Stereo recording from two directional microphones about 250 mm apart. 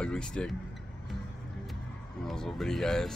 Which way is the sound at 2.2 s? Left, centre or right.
Centre.